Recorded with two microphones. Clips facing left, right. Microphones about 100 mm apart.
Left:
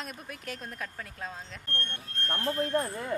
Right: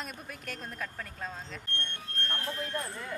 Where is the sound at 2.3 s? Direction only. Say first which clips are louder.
Left 8 dB; 40° left (ahead or behind).